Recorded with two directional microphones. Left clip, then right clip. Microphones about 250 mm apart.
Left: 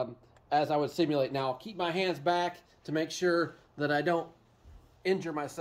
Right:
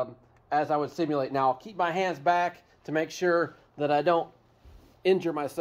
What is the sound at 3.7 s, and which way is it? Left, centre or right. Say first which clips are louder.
Speech: right 6 dB; centre.